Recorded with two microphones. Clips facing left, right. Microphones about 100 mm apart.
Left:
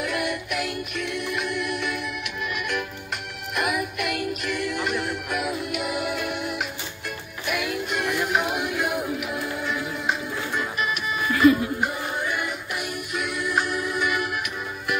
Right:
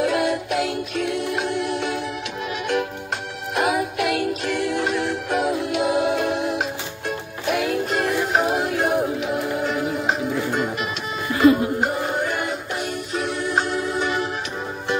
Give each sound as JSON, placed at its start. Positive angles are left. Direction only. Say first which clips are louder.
{"t": 0.0, "sound": "music", "louder": "right 7 dB", "side_deg": -30}
{"t": 3.5, "sound": "music", "louder": "right 5 dB", "side_deg": -35}